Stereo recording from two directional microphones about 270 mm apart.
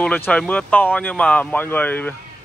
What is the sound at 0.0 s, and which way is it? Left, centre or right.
Speech, centre.